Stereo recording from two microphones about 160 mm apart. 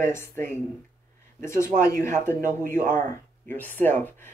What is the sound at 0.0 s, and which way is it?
Speech, 15° left (ahead or behind).